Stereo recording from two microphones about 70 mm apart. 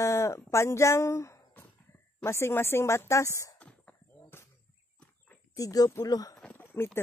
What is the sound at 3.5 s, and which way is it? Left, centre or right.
Whispering, centre.